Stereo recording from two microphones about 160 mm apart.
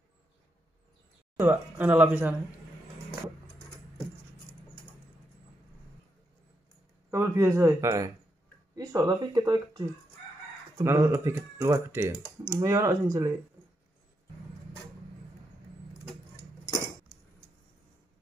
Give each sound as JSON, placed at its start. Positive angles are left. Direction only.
{"t": 1.4, "sound": "speech", "side_deg": -10}
{"t": 7.1, "sound": "speech", "side_deg": -20}